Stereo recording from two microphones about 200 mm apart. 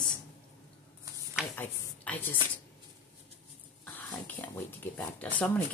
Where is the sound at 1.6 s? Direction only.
10° left (ahead or behind).